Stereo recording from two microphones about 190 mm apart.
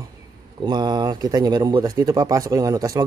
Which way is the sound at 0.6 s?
20° right (ahead or behind).